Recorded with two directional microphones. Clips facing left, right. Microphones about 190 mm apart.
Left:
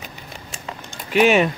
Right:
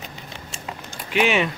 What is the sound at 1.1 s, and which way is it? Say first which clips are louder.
Speech: left 5 dB; 45° left (ahead or behind).